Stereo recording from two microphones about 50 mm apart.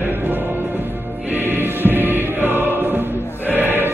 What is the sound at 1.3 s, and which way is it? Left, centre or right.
Music, right.